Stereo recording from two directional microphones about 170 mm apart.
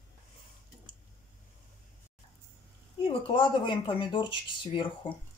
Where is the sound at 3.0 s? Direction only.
30° left (ahead or behind).